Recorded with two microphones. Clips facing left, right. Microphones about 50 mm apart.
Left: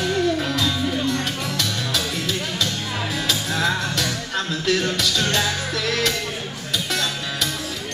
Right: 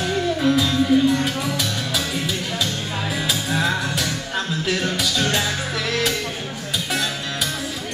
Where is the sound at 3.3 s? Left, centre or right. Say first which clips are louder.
Even; centre.